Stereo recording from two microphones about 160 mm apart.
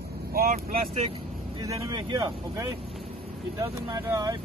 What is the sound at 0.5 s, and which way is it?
Speech, 40° right (ahead or behind).